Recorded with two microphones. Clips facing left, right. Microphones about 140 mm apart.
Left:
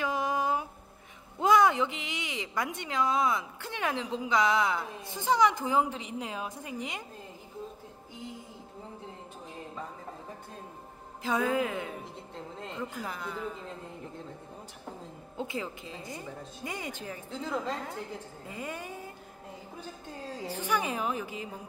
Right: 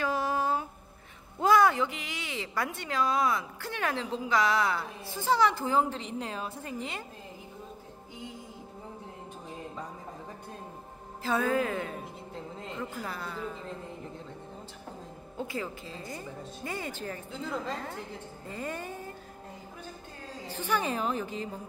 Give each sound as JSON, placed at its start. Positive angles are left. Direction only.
{"t": 0.0, "sound": "a sound", "side_deg": 15}
{"t": 1.4, "sound": "a woman's voice", "side_deg": 20}
{"t": 11.2, "sound": "a woman's voice", "side_deg": 15}
{"t": 13.0, "sound": "a woman's voice", "side_deg": 15}
{"t": 15.3, "sound": "a woman's voice", "side_deg": 20}
{"t": 17.3, "sound": "a woman's voice", "side_deg": 0}
{"t": 18.5, "sound": "a sound", "side_deg": 10}
{"t": 20.4, "sound": "a woman's voice", "side_deg": 10}